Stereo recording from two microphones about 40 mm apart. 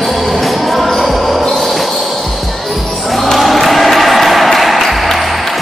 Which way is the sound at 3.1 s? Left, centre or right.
Centre.